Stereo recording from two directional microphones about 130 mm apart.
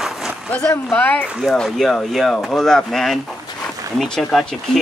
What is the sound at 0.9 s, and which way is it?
Speech, 15° left (ahead or behind).